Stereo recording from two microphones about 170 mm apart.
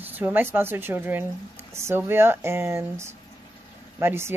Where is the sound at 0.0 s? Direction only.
10° right (ahead or behind).